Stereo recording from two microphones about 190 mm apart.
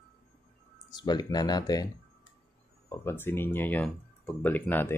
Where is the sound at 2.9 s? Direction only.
15° left (ahead or behind).